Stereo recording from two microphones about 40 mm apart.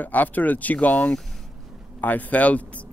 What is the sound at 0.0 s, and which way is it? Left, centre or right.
A man's voice, left.